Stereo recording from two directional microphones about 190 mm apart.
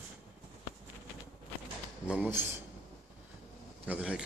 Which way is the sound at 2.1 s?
10° right (ahead or behind).